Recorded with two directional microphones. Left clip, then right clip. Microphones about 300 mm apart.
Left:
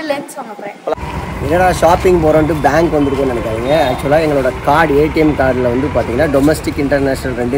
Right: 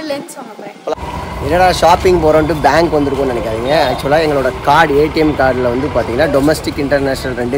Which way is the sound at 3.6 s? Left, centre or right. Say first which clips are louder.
Even; centre.